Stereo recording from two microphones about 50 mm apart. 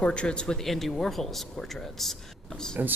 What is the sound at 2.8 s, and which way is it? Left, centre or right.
Speech, right.